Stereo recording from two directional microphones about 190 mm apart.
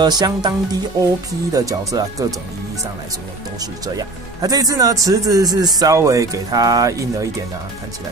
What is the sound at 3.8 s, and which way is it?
Speech, 20° right (ahead or behind).